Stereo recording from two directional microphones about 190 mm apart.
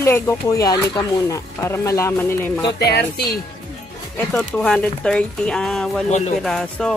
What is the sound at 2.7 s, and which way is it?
Speech, 60° left (ahead or behind).